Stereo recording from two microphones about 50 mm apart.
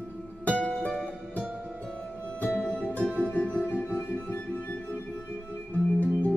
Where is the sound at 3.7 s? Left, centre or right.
Left.